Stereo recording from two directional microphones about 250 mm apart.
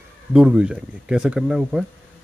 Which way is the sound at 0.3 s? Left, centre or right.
Centre.